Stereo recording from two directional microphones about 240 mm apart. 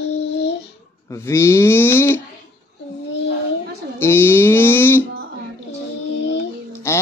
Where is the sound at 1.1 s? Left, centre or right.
Centre.